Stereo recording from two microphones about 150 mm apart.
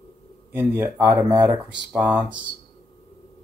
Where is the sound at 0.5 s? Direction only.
15° right (ahead or behind).